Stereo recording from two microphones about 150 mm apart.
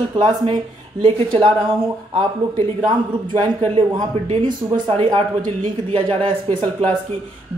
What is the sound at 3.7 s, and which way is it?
Speech, 30° right (ahead or behind).